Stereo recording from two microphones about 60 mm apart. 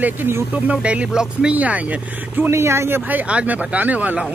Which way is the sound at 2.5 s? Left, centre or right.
Right.